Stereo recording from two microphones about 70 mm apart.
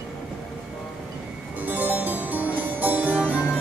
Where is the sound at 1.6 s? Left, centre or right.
Right.